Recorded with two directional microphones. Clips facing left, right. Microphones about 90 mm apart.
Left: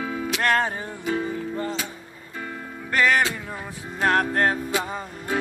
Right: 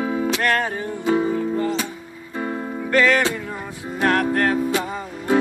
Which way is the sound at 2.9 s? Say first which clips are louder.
Right 3 dB; 15° left (ahead or behind).